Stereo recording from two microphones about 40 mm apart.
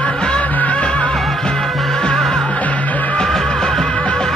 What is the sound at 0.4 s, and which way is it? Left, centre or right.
Music, left.